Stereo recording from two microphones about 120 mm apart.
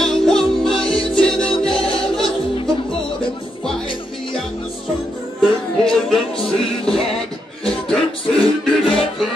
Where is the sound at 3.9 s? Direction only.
45° left (ahead or behind).